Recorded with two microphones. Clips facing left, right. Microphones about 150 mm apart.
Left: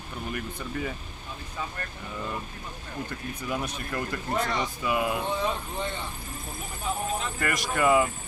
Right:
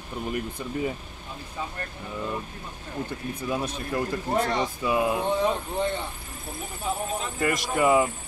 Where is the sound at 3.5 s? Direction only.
25° right (ahead or behind).